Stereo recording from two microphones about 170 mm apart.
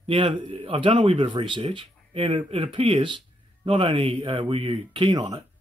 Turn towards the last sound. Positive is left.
turn(degrees=-25)  # may be behind; listen again after turning